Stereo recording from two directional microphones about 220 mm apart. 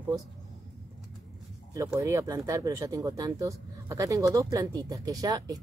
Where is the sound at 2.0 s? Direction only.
15° right (ahead or behind).